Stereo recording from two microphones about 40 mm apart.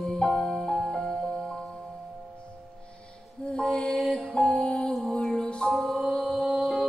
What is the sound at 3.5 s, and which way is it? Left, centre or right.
Music, left.